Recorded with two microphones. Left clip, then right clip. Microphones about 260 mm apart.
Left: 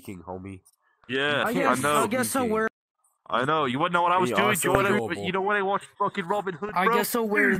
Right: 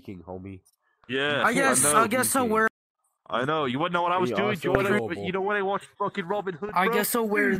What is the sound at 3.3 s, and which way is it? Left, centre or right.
Speech, centre.